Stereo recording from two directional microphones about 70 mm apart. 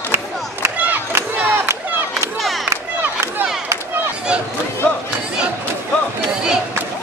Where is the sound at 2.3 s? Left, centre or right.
Centre.